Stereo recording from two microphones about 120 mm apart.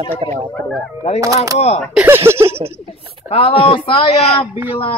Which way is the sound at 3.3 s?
50° left (ahead or behind).